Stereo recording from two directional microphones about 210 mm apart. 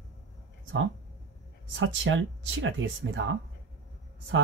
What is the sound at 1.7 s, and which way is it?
Speech, 65° right (ahead or behind).